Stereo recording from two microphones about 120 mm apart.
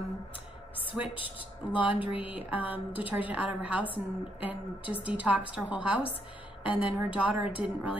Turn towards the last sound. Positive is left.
turn(degrees=-10)  # may be behind; listen again after turning